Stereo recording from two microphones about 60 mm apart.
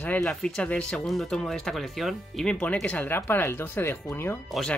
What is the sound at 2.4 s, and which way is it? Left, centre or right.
Speech, centre.